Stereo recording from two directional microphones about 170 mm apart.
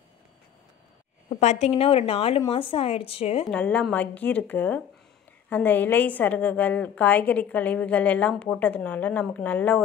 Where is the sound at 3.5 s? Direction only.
5° left (ahead or behind).